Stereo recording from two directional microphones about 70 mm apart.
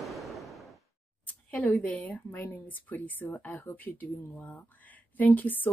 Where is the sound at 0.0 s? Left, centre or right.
Centre.